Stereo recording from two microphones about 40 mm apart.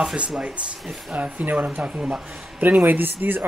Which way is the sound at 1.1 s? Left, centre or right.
Right.